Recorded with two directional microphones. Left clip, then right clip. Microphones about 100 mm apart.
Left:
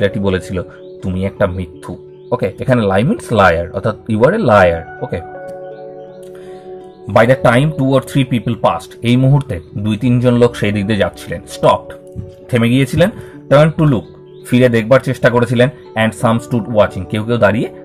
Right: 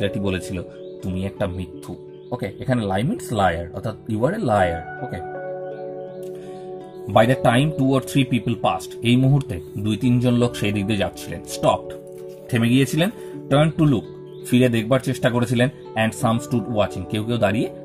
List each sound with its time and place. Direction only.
0.0 s speech: 35° right (ahead or behind)
2.3 s speech: 15° right (ahead or behind)
5.3 s music: centre (ahead or behind)
7.1 s speech: 45° right (ahead or behind)